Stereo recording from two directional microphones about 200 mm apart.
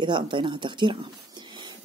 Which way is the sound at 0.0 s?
25° right (ahead or behind).